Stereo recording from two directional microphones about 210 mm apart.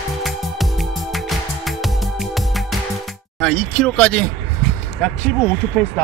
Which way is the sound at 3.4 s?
Centre (ahead or behind).